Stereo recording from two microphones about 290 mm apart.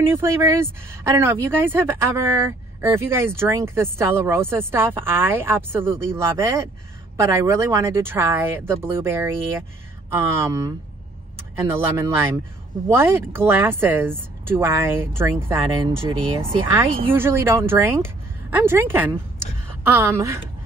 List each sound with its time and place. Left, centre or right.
0.1 s speech: centre